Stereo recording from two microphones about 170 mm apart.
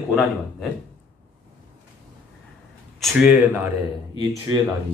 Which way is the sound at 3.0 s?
5° right (ahead or behind).